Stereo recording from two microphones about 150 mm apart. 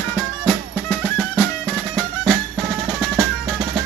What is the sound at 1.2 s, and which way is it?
Music, 5° left (ahead or behind).